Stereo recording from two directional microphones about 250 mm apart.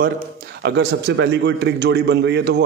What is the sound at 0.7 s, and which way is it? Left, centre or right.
A man's voice, right.